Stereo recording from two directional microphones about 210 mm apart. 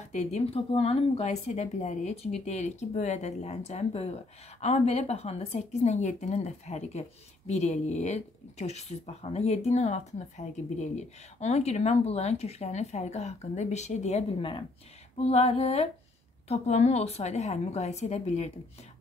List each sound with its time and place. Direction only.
0.0 s speech: 35° left (ahead or behind)
15.1 s mantra: 30° left (ahead or behind)
16.4 s speech: 30° left (ahead or behind)